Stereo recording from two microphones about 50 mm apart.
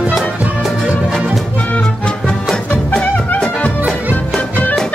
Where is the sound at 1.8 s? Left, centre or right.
Centre.